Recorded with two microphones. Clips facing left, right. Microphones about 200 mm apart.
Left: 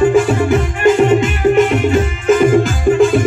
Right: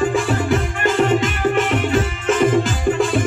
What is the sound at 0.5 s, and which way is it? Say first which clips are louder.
Music: left 8 dB; 10° left (ahead or behind).